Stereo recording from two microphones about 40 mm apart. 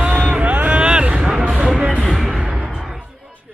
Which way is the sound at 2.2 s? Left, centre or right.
Centre.